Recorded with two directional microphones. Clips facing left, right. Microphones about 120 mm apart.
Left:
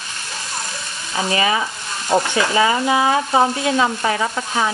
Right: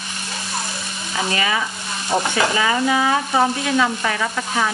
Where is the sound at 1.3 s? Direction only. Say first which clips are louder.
Left 5 dB; 30° left (ahead or behind).